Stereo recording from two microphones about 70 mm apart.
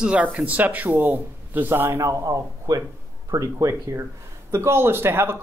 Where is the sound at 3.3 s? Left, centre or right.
Right.